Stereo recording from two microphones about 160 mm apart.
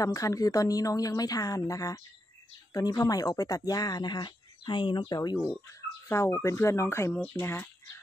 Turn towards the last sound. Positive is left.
turn(degrees=15)  # may be behind; listen again after turning